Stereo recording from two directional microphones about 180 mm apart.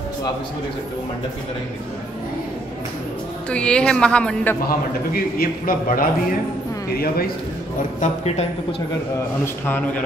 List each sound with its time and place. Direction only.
3.4 s speech: 5° left (ahead or behind)
4.6 s a man's voice: 55° left (ahead or behind)
8.0 s speech: 35° left (ahead or behind)
9.4 s a man's voice: 10° left (ahead or behind)